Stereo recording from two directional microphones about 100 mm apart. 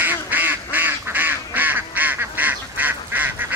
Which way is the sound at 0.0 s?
20° right (ahead or behind).